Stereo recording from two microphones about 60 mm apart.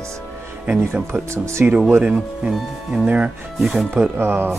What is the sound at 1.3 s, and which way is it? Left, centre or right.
Speech, right.